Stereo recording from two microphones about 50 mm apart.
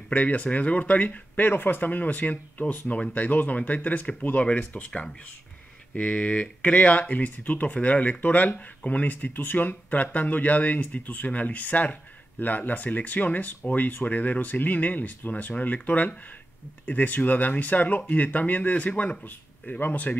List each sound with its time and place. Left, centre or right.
0.1 s speech: left